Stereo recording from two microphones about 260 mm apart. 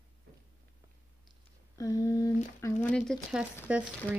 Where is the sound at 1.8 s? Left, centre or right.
Centre.